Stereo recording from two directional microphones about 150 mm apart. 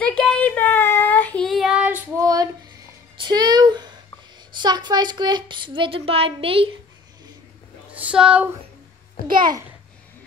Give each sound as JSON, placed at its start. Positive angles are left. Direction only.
{"t": 0.0, "sound": "child singing", "side_deg": 5}
{"t": 2.1, "sound": "a sound", "side_deg": -25}
{"t": 3.2, "sound": "music", "side_deg": -30}
{"t": 4.6, "sound": "speech", "side_deg": -30}
{"t": 7.9, "sound": "speech", "side_deg": -5}